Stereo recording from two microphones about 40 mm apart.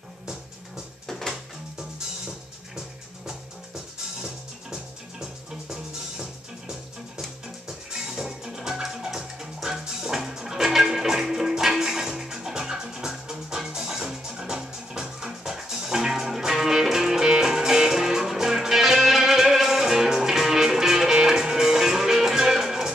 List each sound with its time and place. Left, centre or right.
1.3 s music: centre
5.2 s music: centre